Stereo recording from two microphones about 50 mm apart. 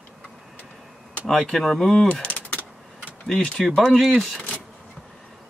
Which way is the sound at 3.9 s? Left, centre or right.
Centre.